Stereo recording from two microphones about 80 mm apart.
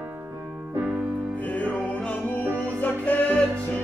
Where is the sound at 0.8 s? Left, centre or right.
Right.